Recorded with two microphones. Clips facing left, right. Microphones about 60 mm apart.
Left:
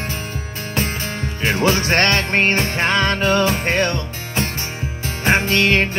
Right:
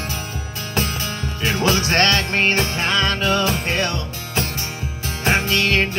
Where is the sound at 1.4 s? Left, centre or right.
Left.